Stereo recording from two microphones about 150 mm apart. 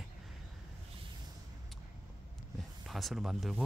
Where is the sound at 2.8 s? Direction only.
Centre (ahead or behind).